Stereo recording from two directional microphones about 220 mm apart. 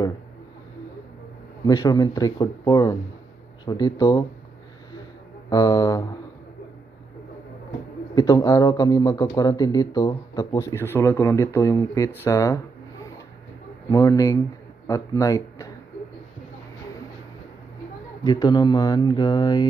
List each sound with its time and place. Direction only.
1.7 s speech: 15° left (ahead or behind)
5.5 s speech: 15° left (ahead or behind)
8.1 s speech: 15° left (ahead or behind)
13.8 s speech: 15° left (ahead or behind)
18.2 s speech: 20° left (ahead or behind)